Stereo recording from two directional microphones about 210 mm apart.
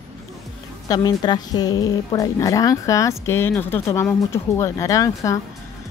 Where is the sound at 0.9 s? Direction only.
20° left (ahead or behind).